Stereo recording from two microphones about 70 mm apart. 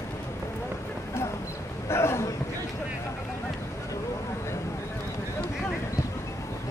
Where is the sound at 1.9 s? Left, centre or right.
Left.